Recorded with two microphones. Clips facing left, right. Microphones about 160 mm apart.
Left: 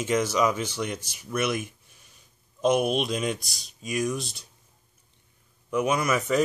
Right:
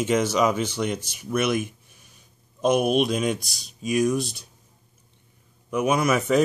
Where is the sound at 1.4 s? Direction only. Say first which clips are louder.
Right 4 dB; 55° right (ahead or behind).